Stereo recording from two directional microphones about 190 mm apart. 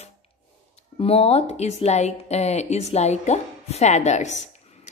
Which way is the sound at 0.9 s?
30° left (ahead or behind).